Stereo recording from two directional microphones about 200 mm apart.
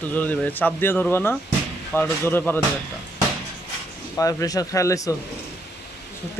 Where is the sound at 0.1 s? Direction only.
10° left (ahead or behind).